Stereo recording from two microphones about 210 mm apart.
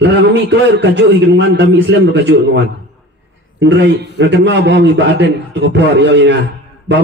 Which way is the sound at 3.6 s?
55° right (ahead or behind).